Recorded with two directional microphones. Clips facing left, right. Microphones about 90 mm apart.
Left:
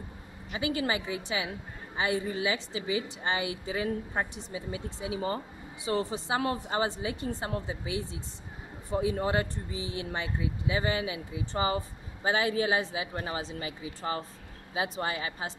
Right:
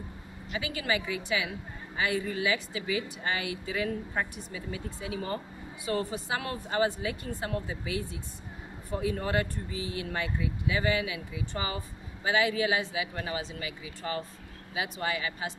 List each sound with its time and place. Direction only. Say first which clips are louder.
0.5 s speech: left 2 dB; 30° left (ahead or behind)